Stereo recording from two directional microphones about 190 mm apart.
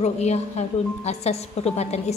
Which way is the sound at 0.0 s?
35° left (ahead or behind).